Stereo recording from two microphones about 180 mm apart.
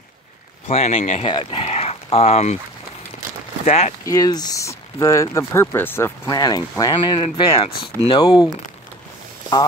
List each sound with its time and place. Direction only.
0.7 s speech: 35° left (ahead or behind)
3.6 s speech: 40° left (ahead or behind)
4.0 s speech: 20° left (ahead or behind)